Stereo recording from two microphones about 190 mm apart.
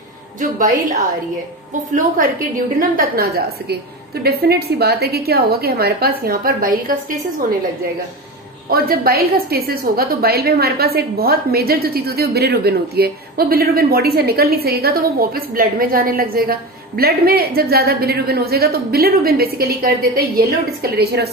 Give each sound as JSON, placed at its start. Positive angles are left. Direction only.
{"t": 0.4, "sound": "a woman's voice", "side_deg": -45}
{"t": 8.6, "sound": "a woman's voice", "side_deg": -50}